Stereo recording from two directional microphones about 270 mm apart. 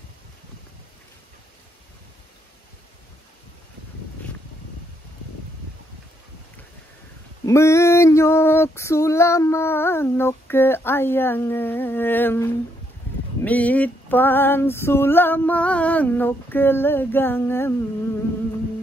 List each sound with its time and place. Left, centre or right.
7.4 s female singing: centre